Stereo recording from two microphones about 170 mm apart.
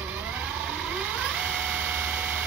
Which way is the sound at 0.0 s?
10° right (ahead or behind).